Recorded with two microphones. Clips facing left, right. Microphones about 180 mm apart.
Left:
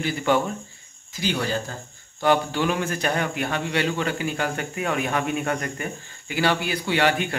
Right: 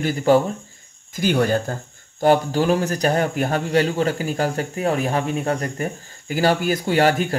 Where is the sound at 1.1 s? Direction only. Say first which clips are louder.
Right 7 dB; 50° right (ahead or behind).